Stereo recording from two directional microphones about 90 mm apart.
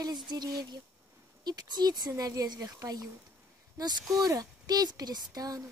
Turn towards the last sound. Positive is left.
turn(degrees=-45)  # may be behind; listen again after turning